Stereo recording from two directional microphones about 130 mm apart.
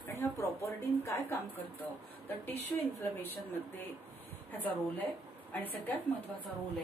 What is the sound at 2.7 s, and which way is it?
Speech, 15° left (ahead or behind).